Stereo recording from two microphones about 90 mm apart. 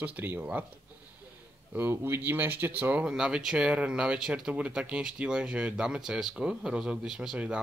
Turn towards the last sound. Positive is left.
turn(degrees=-10)  # may be behind; listen again after turning